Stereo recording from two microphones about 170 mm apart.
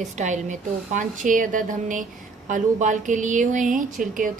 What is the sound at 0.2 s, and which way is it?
A woman's voice, 45° right (ahead or behind).